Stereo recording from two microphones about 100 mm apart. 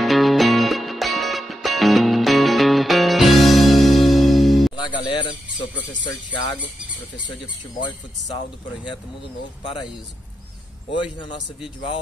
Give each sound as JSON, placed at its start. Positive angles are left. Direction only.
{"t": 0.0, "sound": "music", "side_deg": 0}
{"t": 4.8, "sound": "music", "side_deg": 50}
{"t": 10.9, "sound": "a man's voice", "side_deg": 55}